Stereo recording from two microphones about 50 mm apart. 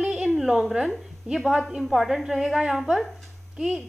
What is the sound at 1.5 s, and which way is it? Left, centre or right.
A woman's voice, centre.